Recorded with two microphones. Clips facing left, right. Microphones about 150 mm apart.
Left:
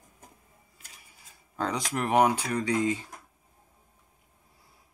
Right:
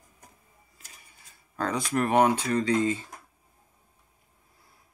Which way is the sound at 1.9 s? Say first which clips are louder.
Right 2 dB; 15° left (ahead or behind).